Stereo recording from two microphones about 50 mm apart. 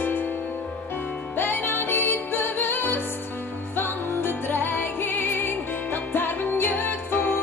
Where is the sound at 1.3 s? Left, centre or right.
Left.